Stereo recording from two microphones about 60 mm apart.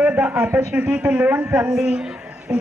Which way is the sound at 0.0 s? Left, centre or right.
Right.